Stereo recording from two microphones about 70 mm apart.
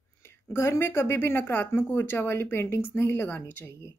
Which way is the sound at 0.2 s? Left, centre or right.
Left.